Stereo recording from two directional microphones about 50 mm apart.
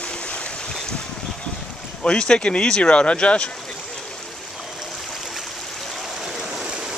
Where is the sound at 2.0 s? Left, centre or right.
Centre.